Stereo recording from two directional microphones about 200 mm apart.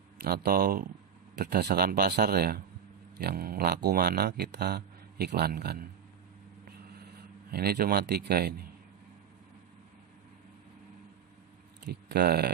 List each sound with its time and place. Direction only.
0.2 s speech: 50° right (ahead or behind)
7.5 s speech: 50° right (ahead or behind)
11.9 s speech: 50° right (ahead or behind)